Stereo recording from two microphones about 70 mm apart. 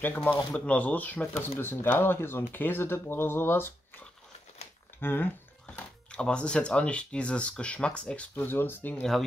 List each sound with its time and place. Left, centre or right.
0.0 s speech: left
5.0 s speech: left
8.4 s speech: left